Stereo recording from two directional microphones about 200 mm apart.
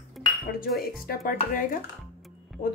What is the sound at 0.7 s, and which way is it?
Speech, 50° left (ahead or behind).